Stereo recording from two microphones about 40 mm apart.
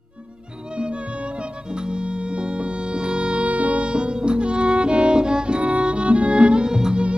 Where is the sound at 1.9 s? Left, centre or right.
Right.